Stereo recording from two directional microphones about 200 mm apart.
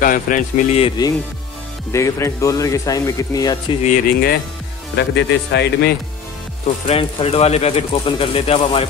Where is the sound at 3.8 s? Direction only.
40° left (ahead or behind).